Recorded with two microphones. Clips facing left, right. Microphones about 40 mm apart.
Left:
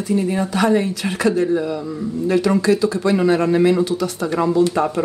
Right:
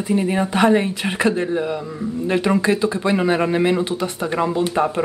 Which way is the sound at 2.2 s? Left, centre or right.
Right.